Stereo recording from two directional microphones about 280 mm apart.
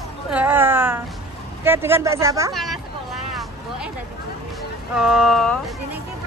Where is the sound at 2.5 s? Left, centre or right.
Centre.